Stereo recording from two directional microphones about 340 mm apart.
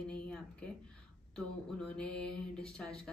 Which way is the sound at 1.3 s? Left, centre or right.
Centre.